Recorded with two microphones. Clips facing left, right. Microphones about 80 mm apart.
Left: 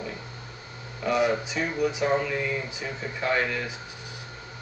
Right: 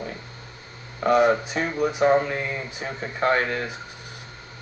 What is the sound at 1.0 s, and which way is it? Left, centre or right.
Speech, right.